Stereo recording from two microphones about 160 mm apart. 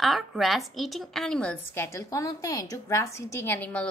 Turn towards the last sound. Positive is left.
turn(degrees=15)  # may be behind; listen again after turning